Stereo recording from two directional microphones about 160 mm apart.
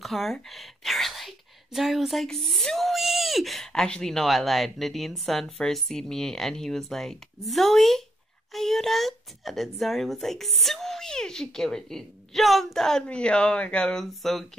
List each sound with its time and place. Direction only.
0.0 s speech: centre (ahead or behind)